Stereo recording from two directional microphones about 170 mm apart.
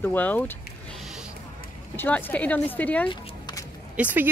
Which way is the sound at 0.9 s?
Centre (ahead or behind).